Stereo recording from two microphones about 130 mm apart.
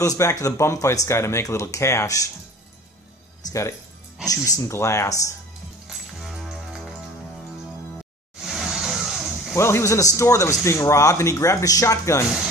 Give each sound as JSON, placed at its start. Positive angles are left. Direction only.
{"t": 0.2, "sound": "speech", "side_deg": 25}
{"t": 3.4, "sound": "speech", "side_deg": 25}
{"t": 5.9, "sound": "music", "side_deg": -5}
{"t": 8.4, "sound": "vehicle", "side_deg": -5}
{"t": 9.6, "sound": "speech", "side_deg": 20}